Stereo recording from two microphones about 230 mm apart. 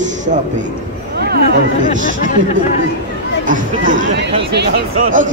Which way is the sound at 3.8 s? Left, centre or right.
Right.